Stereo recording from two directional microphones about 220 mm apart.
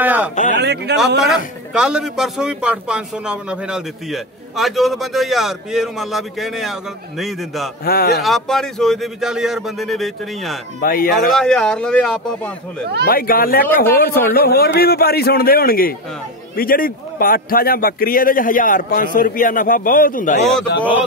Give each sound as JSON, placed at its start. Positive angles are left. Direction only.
{"t": 0.0, "sound": "a sound", "side_deg": -10}
{"t": 0.6, "sound": "a man's voice", "side_deg": -50}
{"t": 1.2, "sound": "a man's voice", "side_deg": -5}
{"t": 7.8, "sound": "a man's voice", "side_deg": 45}
{"t": 8.2, "sound": "a man's voice", "side_deg": 0}
{"t": 10.8, "sound": "a man's voice", "side_deg": 40}
{"t": 11.1, "sound": "a man's voice", "side_deg": 0}
{"t": 13.0, "sound": "a man's voice", "side_deg": 40}